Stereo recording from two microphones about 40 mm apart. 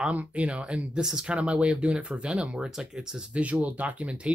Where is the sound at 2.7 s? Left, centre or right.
Centre.